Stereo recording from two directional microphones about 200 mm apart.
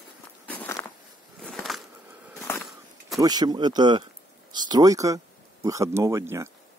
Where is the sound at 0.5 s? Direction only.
10° left (ahead or behind).